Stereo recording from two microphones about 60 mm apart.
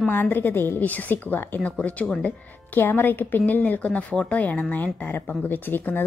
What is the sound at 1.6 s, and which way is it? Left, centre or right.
Speech, left.